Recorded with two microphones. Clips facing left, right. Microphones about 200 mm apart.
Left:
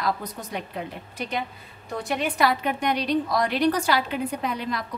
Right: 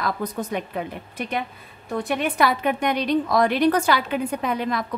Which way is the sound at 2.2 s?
55° right (ahead or behind).